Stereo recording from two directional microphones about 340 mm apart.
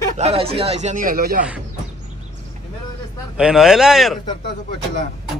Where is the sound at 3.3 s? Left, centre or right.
Centre.